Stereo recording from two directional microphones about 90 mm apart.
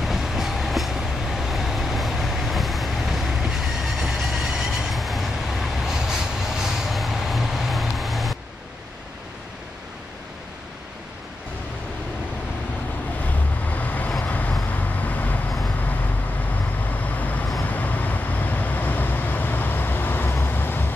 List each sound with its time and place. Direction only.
0.0 s train: 5° right (ahead or behind)
13.7 s vehicle: 20° left (ahead or behind)
17.2 s vehicle: 20° left (ahead or behind)